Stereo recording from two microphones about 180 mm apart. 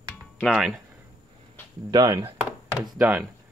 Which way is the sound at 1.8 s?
20° right (ahead or behind).